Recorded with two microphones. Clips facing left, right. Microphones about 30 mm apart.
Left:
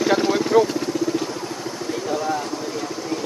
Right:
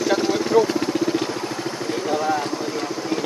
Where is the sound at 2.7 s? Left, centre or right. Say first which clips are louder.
Right 2 dB; right.